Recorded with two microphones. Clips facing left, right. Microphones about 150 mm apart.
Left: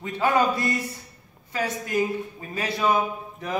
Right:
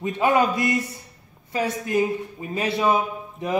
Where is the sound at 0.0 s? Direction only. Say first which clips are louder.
Right 3 dB; 20° right (ahead or behind).